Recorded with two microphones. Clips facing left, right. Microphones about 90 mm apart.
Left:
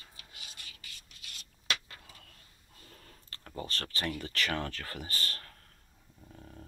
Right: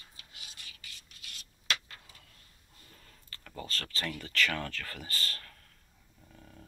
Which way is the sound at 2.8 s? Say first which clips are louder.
Left 2 dB; 45° left (ahead or behind).